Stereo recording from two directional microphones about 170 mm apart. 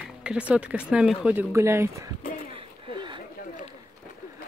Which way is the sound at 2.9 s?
25° right (ahead or behind).